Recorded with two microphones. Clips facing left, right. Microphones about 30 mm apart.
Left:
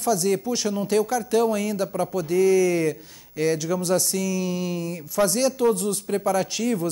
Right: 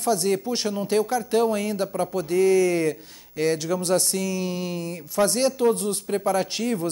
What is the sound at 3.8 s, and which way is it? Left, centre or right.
Speech, right.